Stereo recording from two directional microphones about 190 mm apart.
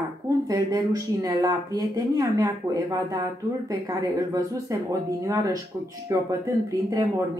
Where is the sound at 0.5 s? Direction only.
20° right (ahead or behind).